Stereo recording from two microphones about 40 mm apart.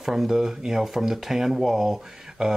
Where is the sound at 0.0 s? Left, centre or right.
Centre.